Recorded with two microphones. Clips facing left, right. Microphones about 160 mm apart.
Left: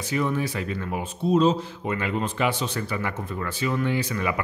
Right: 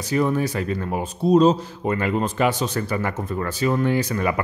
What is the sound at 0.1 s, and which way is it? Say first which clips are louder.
Speech: right 5 dB; 40° right (ahead or behind).